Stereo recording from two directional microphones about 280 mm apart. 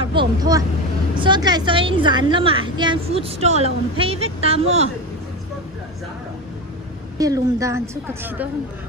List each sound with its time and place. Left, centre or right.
0.1 s a woman's voice: centre
7.2 s a woman's voice: centre